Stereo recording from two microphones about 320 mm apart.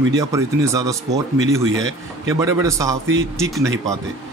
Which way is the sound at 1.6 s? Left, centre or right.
Right.